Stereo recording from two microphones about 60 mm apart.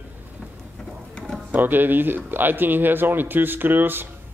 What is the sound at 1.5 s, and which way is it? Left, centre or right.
Speech, right.